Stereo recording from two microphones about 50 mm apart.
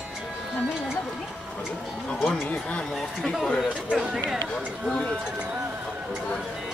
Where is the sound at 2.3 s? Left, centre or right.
Left.